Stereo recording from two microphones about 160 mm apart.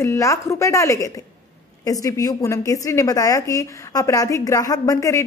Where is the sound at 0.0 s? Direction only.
20° left (ahead or behind).